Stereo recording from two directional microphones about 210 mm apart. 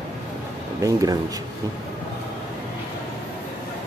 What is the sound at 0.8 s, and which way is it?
Speech, 15° right (ahead or behind).